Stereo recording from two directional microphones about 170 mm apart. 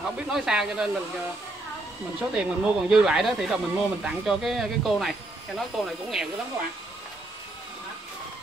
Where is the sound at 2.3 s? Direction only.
5° right (ahead or behind).